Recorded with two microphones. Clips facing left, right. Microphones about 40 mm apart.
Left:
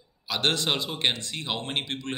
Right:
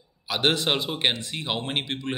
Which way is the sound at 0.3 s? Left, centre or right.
Centre.